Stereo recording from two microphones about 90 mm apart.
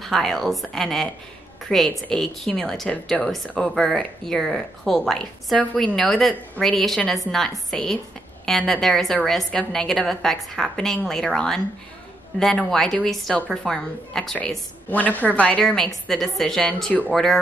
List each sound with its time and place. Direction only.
0.0 s a woman's voice: 5° left (ahead or behind)
14.9 s a woman's voice: 20° left (ahead or behind); by 17.4 s 5° left (ahead or behind)